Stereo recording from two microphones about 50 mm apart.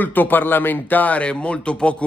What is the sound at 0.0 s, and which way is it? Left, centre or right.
Speech, left.